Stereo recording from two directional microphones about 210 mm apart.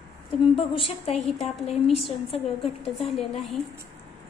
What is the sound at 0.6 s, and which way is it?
Speech, 25° left (ahead or behind).